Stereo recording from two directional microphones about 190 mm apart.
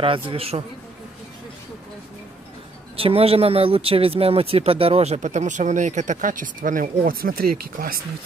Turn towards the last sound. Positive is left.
turn(degrees=-50)  # may be behind; listen again after turning